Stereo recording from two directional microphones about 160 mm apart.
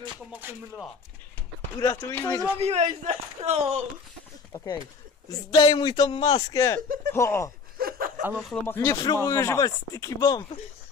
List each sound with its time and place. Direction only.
0.3 s music: 10° right (ahead or behind)
1.8 s speech: 20° left (ahead or behind)
2.6 s a man's voice: 45° right (ahead or behind)
5.5 s speech: 30° left (ahead or behind)
7.7 s chuckle: 65° right (ahead or behind)
8.2 s speech: 10° right (ahead or behind)
8.6 s speech: 20° left (ahead or behind)